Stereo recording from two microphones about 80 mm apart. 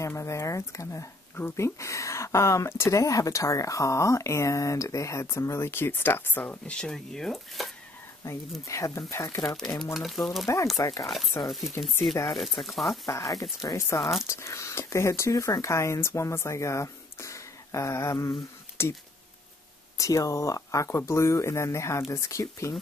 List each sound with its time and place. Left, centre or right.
0.0 s speech: left
6.7 s speech: centre
8.2 s speech: left
9.6 s speech: centre
10.4 s speech: left
11.4 s speech: centre
13.0 s speech: left
20.0 s speech: left